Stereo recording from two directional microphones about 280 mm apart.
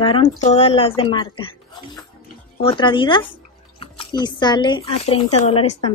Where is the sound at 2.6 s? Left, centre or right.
Centre.